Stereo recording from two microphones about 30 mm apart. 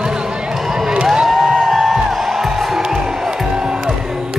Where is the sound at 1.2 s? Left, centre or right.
Centre.